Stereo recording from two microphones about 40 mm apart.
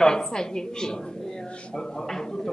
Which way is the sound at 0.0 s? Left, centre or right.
Centre.